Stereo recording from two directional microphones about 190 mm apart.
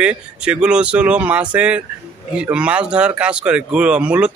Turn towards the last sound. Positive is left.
turn(degrees=-5)  # may be behind; listen again after turning